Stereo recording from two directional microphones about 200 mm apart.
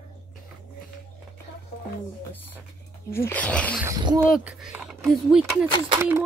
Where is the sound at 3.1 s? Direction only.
10° left (ahead or behind).